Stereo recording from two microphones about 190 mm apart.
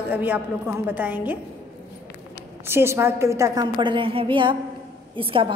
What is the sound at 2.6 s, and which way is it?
A woman's voice, 10° right (ahead or behind).